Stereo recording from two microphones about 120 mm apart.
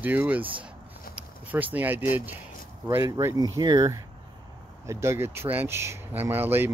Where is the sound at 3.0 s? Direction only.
25° right (ahead or behind).